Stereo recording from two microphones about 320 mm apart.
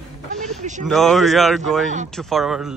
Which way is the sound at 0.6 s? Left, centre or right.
Right.